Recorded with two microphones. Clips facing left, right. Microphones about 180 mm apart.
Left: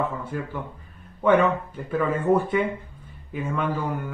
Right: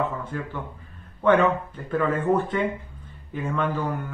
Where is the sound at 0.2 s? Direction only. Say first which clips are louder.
Left 1 dB; 10° left (ahead or behind).